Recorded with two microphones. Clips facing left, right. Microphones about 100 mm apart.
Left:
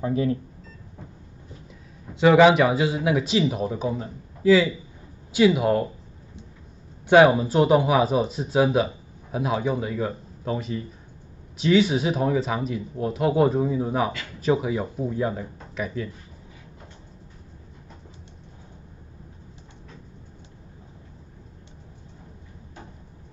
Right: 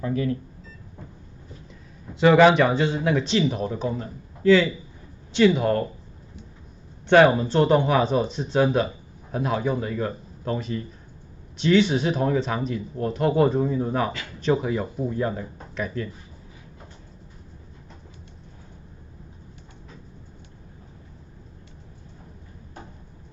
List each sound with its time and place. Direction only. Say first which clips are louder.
0.0 s speech: left 2 dB; 25° left (ahead or behind)
2.1 s speech: even; centre (ahead or behind)
7.1 s speech: left 1 dB; 10° left (ahead or behind)